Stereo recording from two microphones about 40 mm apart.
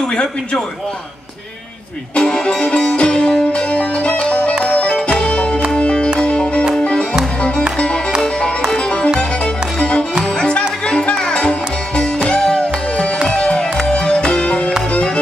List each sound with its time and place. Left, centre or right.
0.1 s a man's voice: left
2.1 s music: left
3.7 s music: left
8.7 s music: left